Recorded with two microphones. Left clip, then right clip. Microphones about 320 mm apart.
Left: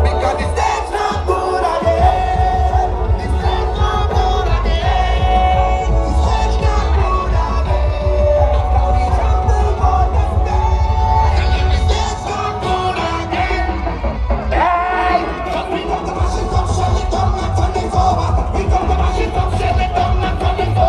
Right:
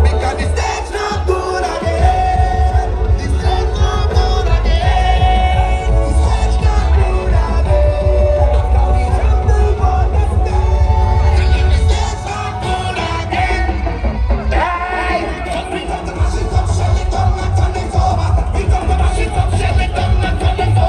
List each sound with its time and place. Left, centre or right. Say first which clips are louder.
0.2 s music: left 2 dB; centre
4.8 s music: right 3 dB; centre
12.6 s music: left 1 dB; right
14.5 s music: left 2 dB; centre
17.9 s music: left 2 dB; right